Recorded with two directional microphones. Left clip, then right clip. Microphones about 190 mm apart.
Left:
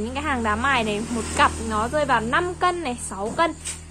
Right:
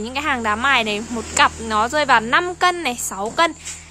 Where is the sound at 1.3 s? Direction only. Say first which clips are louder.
Right 4 dB; 40° right (ahead or behind).